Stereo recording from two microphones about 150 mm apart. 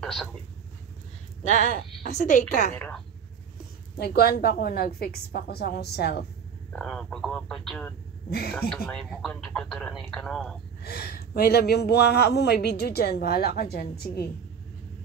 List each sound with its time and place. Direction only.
0.0 s speech: 5° left (ahead or behind)
1.5 s a woman's voice: 50° left (ahead or behind)
2.7 s a woman's voice: 10° left (ahead or behind)
4.0 s speech: 90° left
6.7 s speech: 5° left (ahead or behind)
8.3 s speech: 90° left
8.9 s speech: 5° left (ahead or behind)
10.8 s speech: 90° left